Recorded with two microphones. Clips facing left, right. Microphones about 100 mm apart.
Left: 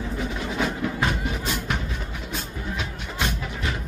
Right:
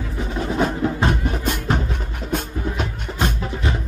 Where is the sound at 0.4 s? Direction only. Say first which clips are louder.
Right 8 dB; 40° right (ahead or behind).